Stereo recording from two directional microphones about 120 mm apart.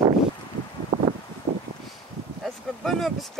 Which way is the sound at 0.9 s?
50° right (ahead or behind).